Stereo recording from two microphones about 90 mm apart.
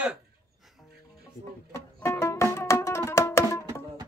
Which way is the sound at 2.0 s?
30° left (ahead or behind).